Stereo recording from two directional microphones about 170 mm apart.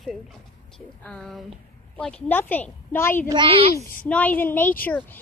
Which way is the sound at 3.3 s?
30° right (ahead or behind).